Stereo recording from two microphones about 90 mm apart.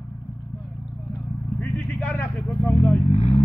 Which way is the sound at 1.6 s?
20° left (ahead or behind).